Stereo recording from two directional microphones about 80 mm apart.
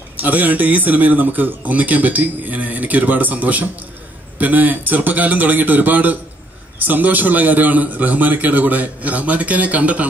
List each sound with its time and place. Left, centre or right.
0.2 s a man's voice: right